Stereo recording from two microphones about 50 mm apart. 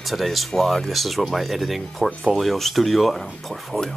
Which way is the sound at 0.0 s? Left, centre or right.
Centre.